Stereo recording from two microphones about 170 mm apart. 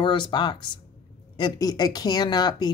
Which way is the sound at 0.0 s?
30° left (ahead or behind).